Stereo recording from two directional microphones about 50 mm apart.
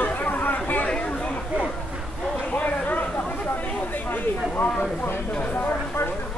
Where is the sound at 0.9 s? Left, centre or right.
Left.